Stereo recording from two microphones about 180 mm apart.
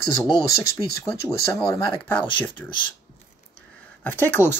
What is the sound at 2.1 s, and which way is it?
Speech, 10° left (ahead or behind).